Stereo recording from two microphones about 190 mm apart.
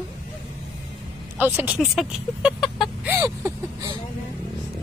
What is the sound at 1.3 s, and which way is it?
A woman's voice, 10° right (ahead or behind).